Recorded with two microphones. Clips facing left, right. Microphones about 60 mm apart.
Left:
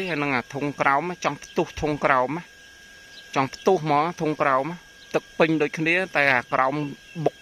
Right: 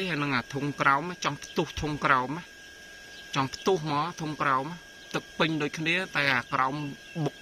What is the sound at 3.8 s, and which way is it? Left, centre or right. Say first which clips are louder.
Speech: left 8 dB; left.